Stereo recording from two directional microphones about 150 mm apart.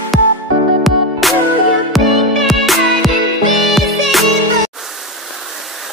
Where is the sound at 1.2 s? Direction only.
Centre (ahead or behind).